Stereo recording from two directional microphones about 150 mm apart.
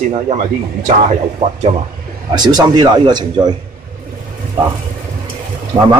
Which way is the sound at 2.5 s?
30° right (ahead or behind).